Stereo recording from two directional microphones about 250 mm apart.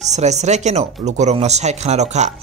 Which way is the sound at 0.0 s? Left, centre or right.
Right.